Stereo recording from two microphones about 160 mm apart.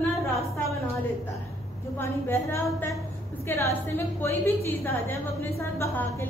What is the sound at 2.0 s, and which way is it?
A woman's voice, 15° left (ahead or behind).